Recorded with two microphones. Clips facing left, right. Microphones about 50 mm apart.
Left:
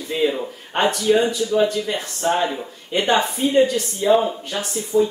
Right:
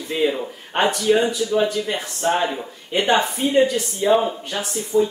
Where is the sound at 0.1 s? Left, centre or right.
Centre.